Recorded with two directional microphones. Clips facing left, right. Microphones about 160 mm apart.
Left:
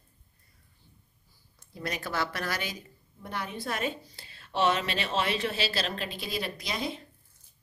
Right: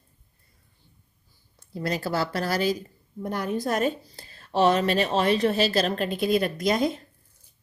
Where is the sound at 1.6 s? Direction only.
30° right (ahead or behind); by 7.0 s 45° right (ahead or behind).